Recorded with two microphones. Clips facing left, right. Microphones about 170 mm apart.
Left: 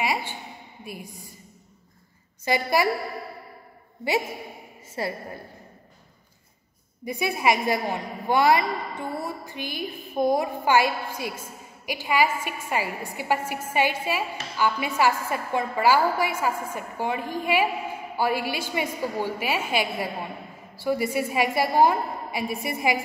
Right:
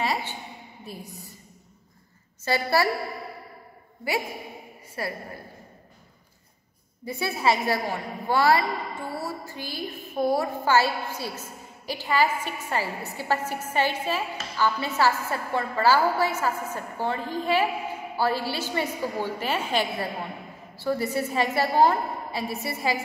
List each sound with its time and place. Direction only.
0.0 s a sound: 10° left (ahead or behind)
0.8 s a woman's voice: 10° left (ahead or behind)
2.4 s a woman's voice: 15° left (ahead or behind)
5.0 s a woman's voice: 25° left (ahead or behind)
7.1 s a woman's voice: 15° left (ahead or behind)